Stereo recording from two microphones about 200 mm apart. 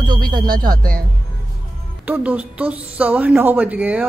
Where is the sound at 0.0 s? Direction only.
20° right (ahead or behind).